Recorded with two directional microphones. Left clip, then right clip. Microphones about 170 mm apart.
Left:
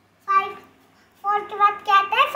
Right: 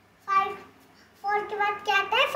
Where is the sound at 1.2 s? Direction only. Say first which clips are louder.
Left 7 dB; 15° right (ahead or behind).